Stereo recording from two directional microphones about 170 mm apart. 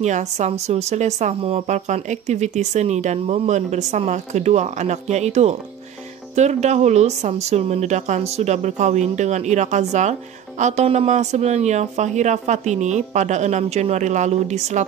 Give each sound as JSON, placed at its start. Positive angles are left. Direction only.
{"t": 0.0, "sound": "speech", "side_deg": -45}